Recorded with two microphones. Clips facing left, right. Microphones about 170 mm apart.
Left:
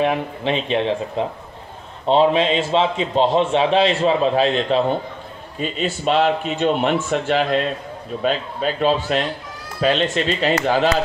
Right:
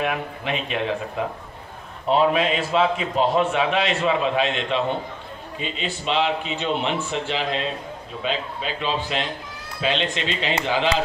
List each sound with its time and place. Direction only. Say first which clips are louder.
0.0 s a man's voice: left 6 dB; 30° left (ahead or behind); by 11.0 s 45° left (ahead or behind)